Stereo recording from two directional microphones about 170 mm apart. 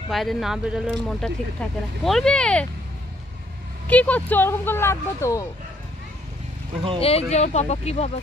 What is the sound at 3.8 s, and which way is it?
Speech, 10° left (ahead or behind).